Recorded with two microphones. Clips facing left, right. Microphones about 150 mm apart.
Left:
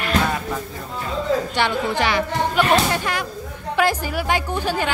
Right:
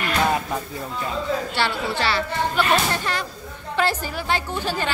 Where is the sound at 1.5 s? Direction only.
15° left (ahead or behind).